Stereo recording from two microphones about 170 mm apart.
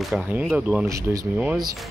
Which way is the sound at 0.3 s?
10° right (ahead or behind).